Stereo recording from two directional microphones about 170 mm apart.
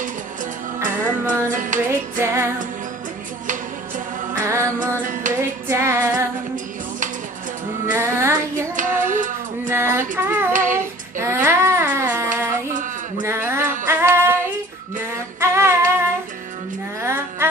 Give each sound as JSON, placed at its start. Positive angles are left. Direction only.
{"t": 0.8, "sound": "music", "side_deg": -50}
{"t": 1.9, "sound": "music", "side_deg": -15}
{"t": 4.4, "sound": "music", "side_deg": -20}
{"t": 5.3, "sound": "female singing", "side_deg": -15}
{"t": 7.8, "sound": "child singing", "side_deg": -15}
{"t": 8.7, "sound": "child singing", "side_deg": -50}
{"t": 9.7, "sound": "music", "side_deg": -15}
{"t": 10.5, "sound": "child singing", "side_deg": -50}
{"t": 10.8, "sound": "child singing", "side_deg": -15}
{"t": 13.2, "sound": "female singing", "side_deg": -15}
{"t": 15.4, "sound": "humming", "side_deg": -15}
{"t": 17.0, "sound": "music", "side_deg": -15}